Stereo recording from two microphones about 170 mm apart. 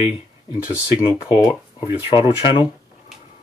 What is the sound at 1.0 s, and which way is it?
Speech, 25° left (ahead or behind).